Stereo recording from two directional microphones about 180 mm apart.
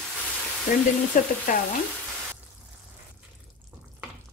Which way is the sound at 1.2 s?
45° left (ahead or behind).